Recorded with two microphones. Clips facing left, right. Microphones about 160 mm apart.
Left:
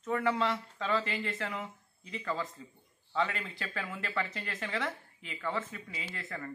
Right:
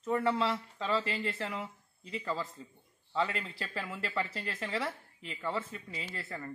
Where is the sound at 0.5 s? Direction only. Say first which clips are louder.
Even; 5° right (ahead or behind).